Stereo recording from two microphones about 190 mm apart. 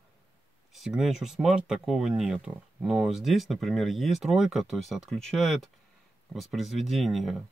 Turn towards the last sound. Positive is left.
turn(degrees=0)  # may be behind; listen again after turning